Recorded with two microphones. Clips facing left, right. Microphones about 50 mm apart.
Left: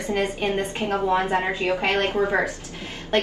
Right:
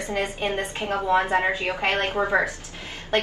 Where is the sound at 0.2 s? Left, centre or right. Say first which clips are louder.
Left 1 dB; right.